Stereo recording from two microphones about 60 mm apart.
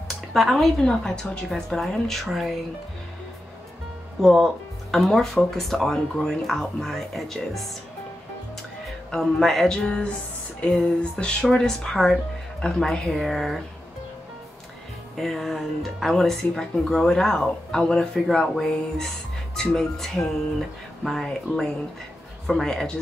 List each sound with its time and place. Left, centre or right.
0.1 s speech: centre
4.2 s speech: centre
8.8 s speech: centre
9.8 s speech: centre
15.1 s speech: centre